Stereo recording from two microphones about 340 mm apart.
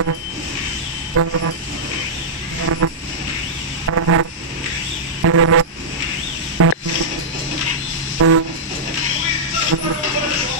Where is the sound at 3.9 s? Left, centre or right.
Right.